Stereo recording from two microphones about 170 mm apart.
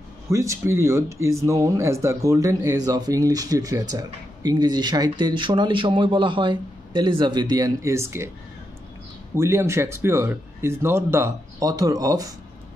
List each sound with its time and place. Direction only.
0.3 s speech: 15° right (ahead or behind)
9.3 s speech: 15° right (ahead or behind)